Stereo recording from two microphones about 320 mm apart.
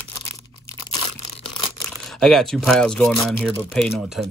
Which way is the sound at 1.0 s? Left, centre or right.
Centre.